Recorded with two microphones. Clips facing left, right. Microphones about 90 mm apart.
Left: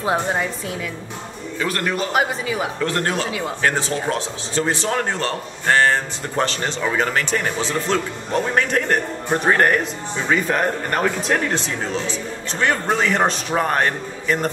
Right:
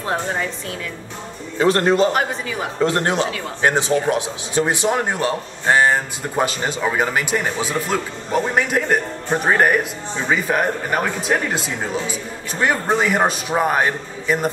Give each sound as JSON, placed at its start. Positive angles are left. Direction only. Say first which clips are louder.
{"t": 0.0, "sound": "a woman's voice", "louder": "left 2 dB", "side_deg": 10}
{"t": 1.6, "sound": "a man's voice", "louder": "right 8 dB", "side_deg": -30}
{"t": 2.1, "sound": "a woman's voice", "louder": "left 1 dB", "side_deg": 5}
{"t": 2.8, "sound": "a man's voice", "louder": "right 8 dB", "side_deg": -20}